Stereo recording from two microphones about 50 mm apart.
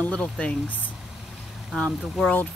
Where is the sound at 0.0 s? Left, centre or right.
Left.